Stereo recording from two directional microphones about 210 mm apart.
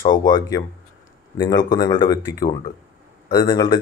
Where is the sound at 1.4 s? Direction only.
20° left (ahead or behind).